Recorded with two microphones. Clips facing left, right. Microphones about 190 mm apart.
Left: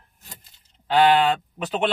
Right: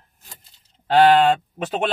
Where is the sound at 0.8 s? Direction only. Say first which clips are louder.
Right 3 dB; 45° right (ahead or behind).